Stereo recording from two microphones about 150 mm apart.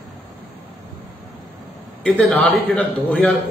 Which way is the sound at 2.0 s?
5° left (ahead or behind).